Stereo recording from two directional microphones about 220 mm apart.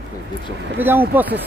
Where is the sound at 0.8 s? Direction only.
10° right (ahead or behind).